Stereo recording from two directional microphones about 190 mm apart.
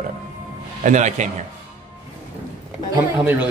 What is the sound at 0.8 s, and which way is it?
Speech, 40° right (ahead or behind).